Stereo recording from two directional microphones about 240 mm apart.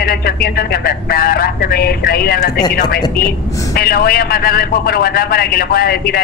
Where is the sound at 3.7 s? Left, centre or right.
Left.